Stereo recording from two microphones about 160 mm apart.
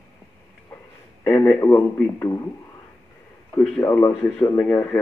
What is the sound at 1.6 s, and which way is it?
Speech, 15° left (ahead or behind).